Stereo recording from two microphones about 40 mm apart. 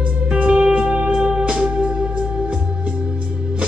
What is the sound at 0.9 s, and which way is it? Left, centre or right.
Music, right.